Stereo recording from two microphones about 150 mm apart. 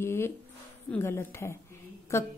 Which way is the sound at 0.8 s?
15° left (ahead or behind).